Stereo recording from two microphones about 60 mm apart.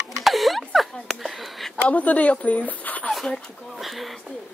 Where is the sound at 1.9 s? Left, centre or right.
Left.